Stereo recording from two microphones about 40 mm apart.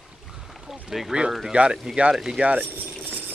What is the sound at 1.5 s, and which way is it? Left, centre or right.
Speech, right.